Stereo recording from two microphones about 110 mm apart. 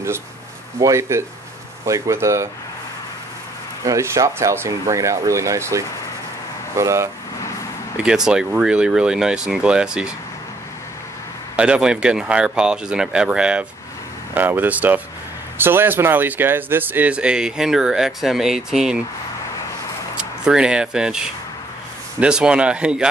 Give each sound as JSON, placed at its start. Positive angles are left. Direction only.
{"t": 0.7, "sound": "speech", "side_deg": -30}
{"t": 3.8, "sound": "speech", "side_deg": -25}
{"t": 8.0, "sound": "speech", "side_deg": -5}
{"t": 11.5, "sound": "speech", "side_deg": -10}
{"t": 20.2, "sound": "speech", "side_deg": -10}